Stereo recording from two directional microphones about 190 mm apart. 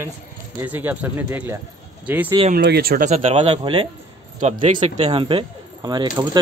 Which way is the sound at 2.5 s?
55° right (ahead or behind).